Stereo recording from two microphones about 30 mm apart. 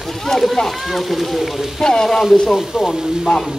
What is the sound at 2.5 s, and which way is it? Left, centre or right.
Speech, centre.